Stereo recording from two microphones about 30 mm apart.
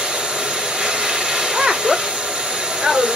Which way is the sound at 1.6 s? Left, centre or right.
Centre.